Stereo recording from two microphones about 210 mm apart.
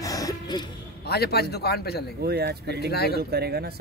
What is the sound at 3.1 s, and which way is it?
Speech, 50° right (ahead or behind).